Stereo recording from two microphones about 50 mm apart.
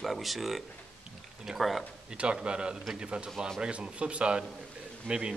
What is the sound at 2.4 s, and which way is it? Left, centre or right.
Speech, centre.